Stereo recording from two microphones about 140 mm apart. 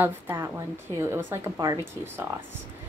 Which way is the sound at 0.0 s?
15° right (ahead or behind).